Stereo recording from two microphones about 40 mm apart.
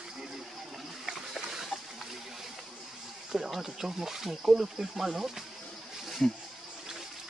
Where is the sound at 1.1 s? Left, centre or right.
Centre.